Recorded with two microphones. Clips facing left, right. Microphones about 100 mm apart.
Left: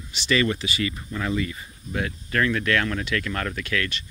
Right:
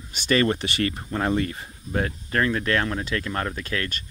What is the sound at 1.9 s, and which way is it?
Speech, 35° right (ahead or behind).